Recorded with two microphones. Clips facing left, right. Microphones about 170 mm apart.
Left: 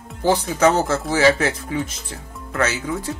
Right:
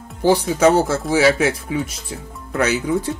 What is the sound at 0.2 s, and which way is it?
Speech, 10° right (ahead or behind).